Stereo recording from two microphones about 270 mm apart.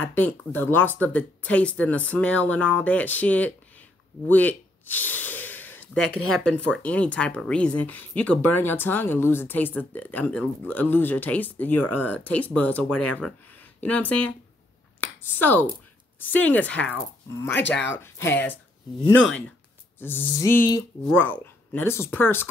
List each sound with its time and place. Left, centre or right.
0.0 s speech: centre
15.0 s finger snapping: centre
16.3 s speech: centre
17.5 s speech: left
17.8 s speech: centre
20.0 s speech: centre